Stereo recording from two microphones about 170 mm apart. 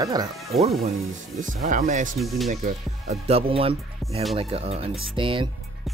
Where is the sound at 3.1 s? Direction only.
35° right (ahead or behind).